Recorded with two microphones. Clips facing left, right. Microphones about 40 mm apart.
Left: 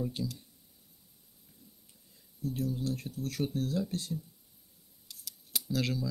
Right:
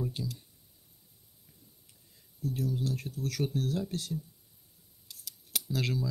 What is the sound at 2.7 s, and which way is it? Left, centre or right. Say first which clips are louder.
Speech: right 1 dB; right.